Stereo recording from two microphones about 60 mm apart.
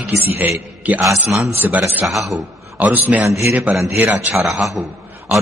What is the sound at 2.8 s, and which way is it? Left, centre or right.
Speech, right.